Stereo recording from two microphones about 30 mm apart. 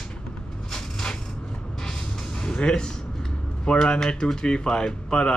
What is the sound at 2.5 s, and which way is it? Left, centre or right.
Speech, left.